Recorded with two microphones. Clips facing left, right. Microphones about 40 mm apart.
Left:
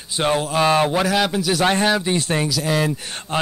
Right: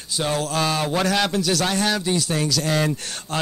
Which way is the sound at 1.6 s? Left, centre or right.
Left.